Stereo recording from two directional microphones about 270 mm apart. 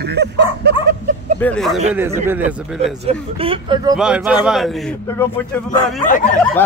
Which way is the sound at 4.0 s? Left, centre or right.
Centre.